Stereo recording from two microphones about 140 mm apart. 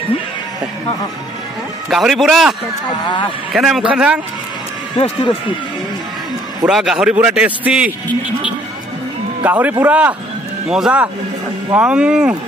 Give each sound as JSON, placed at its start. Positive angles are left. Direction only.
{"t": 1.9, "sound": "a man's voice", "side_deg": 0}
{"t": 3.5, "sound": "a man's voice", "side_deg": 0}
{"t": 4.9, "sound": "speech", "side_deg": 40}
{"t": 6.7, "sound": "a man's voice", "side_deg": -5}
{"t": 9.4, "sound": "a man's voice", "side_deg": -10}